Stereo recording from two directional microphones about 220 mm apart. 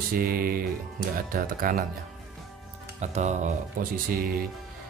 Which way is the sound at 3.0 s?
30° right (ahead or behind).